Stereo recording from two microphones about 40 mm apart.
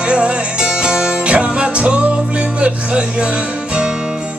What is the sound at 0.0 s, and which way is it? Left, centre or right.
Music, right.